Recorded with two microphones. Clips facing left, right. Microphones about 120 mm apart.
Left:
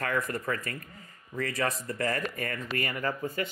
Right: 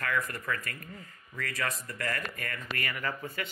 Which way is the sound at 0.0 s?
30° left (ahead or behind).